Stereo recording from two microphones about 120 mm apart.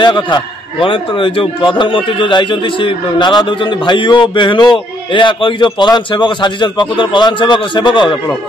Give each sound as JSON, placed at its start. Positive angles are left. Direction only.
{"t": 0.0, "sound": "a man's voice", "side_deg": 40}